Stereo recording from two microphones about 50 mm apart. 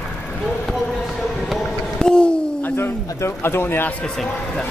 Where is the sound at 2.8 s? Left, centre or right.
Left.